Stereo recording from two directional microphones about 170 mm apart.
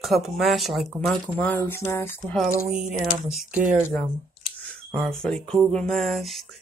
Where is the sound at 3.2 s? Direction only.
5° right (ahead or behind).